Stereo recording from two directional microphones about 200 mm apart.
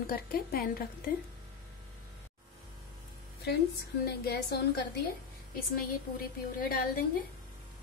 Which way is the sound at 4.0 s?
50° left (ahead or behind).